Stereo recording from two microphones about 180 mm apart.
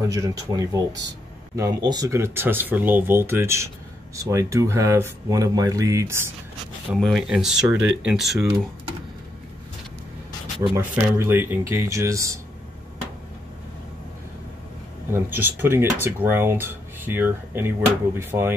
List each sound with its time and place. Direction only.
0.1 s speech: 20° right (ahead or behind)
6.9 s speech: centre (ahead or behind)
10.7 s speech: 15° right (ahead or behind)
15.1 s speech: 10° right (ahead or behind)